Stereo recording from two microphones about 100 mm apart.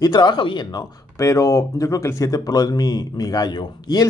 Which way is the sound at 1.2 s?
30° left (ahead or behind).